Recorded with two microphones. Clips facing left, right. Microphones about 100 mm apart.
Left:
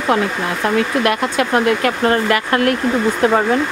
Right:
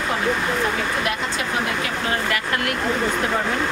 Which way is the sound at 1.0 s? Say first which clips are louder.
Left 8 dB; 60° left (ahead or behind).